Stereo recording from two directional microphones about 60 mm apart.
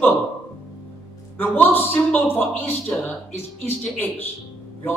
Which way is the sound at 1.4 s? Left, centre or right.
Left.